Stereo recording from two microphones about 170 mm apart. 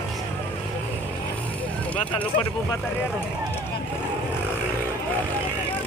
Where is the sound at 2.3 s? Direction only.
70° left (ahead or behind).